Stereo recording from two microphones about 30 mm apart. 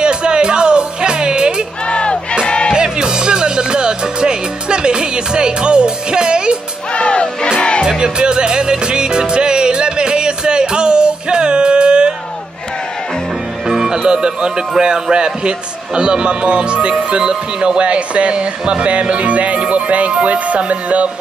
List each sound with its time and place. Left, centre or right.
0.0 s music: right
1.9 s battle cry: left
2.4 s music: left
2.7 s music: right
6.9 s music: left
8.0 s music: right
13.7 s music: centre
14.8 s a man's voice: right
17.2 s music: right